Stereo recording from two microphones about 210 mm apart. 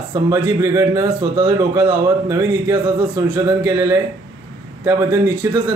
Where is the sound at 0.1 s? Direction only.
15° right (ahead or behind).